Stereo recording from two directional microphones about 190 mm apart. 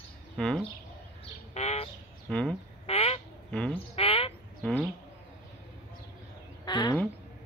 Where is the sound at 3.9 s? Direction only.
30° left (ahead or behind).